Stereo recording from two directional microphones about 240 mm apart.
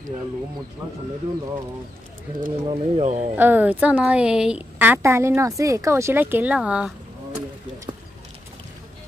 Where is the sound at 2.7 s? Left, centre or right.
Right.